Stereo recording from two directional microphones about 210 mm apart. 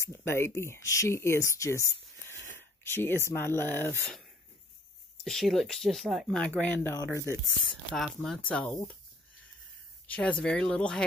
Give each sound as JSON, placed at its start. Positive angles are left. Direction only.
{"t": 0.0, "sound": "speech", "side_deg": 10}
{"t": 2.5, "sound": "a sound", "side_deg": 10}
{"t": 3.3, "sound": "speech", "side_deg": 10}
{"t": 5.2, "sound": "speech", "side_deg": 0}
{"t": 7.9, "sound": "speech", "side_deg": 0}
{"t": 10.0, "sound": "speech", "side_deg": 5}